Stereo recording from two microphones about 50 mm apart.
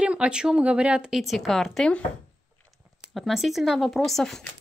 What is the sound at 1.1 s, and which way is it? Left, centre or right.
Speech, centre.